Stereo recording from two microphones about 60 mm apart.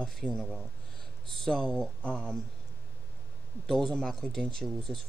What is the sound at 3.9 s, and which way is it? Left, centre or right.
Speech, centre.